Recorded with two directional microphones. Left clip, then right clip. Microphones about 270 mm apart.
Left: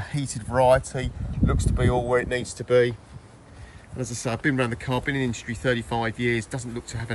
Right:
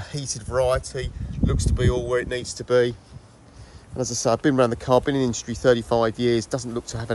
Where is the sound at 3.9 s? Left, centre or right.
Centre.